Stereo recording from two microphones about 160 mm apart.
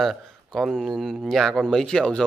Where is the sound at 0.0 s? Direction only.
Centre (ahead or behind).